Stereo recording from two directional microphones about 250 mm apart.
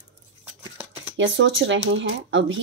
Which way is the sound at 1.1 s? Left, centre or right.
Right.